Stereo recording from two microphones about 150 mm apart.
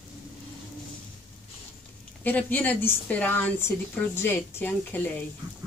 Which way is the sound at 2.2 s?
10° left (ahead or behind).